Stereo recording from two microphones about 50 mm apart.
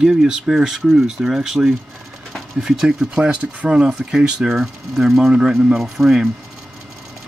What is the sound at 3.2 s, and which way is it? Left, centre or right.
Speech, right.